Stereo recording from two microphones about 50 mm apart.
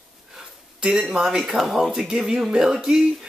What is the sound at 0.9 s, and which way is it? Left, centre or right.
Speech, centre.